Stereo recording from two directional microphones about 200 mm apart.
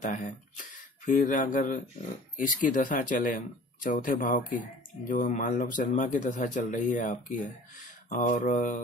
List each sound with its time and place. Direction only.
0.0 s speech: 40° left (ahead or behind)